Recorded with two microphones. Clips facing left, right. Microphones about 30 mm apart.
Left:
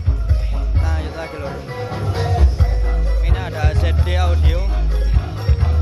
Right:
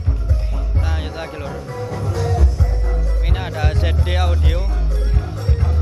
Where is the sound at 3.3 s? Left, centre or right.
Centre.